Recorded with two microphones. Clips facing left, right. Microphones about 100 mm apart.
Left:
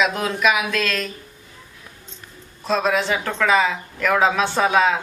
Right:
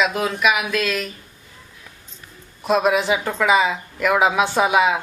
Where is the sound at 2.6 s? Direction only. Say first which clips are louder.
Right 2 dB; 15° right (ahead or behind).